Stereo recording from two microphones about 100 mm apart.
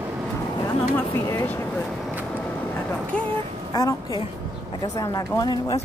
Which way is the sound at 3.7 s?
40° left (ahead or behind).